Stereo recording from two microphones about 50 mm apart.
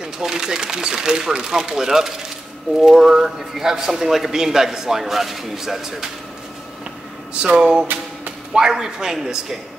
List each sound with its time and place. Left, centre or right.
0.0 s a man's voice: centre
7.4 s a man's voice: centre